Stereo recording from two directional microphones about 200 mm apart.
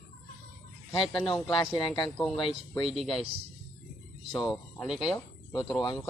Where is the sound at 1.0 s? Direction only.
Centre (ahead or behind).